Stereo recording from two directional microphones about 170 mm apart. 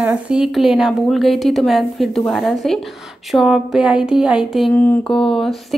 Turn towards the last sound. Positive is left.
turn(degrees=5)  # may be behind; listen again after turning